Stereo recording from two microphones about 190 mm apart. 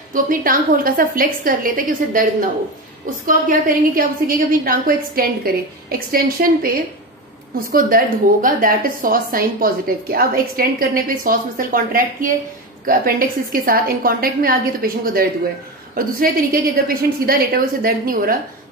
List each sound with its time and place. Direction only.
0.1 s a woman's voice: 45° right (ahead or behind)
3.3 s a woman's voice: 45° right (ahead or behind)